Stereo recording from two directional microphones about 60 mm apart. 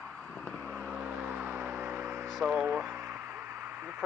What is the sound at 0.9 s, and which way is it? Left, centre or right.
Vehicle, centre.